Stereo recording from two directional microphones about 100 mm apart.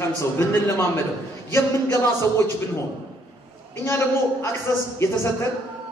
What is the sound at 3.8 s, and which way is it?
A man's voice, 25° left (ahead or behind).